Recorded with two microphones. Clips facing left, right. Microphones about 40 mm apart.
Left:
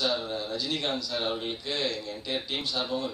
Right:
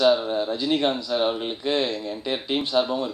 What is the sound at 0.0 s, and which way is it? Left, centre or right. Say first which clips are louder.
Speech: right 10 dB; right.